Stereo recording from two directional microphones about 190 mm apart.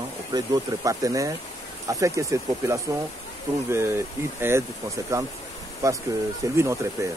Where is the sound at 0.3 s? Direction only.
20° right (ahead or behind).